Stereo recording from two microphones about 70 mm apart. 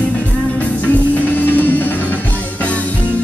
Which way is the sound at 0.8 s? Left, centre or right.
Left.